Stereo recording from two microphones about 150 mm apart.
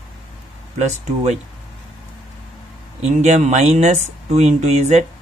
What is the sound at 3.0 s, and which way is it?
Speech, 50° right (ahead or behind).